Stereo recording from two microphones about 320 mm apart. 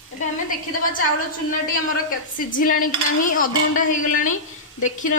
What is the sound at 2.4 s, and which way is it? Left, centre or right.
A woman's voice, left.